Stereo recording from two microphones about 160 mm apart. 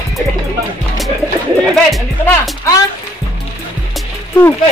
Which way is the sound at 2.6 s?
20° left (ahead or behind).